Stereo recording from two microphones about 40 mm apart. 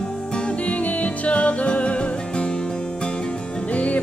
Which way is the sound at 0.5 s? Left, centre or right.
Left.